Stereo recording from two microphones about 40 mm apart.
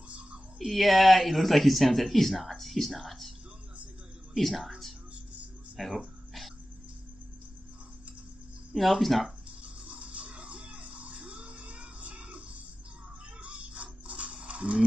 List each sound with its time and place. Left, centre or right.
0.6 s speech: centre
4.4 s a woman's voice: centre
8.7 s speech: centre
9.6 s music: right
13.4 s a sound: right